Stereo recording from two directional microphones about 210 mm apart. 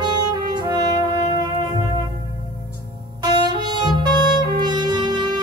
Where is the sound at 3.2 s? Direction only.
20° right (ahead or behind).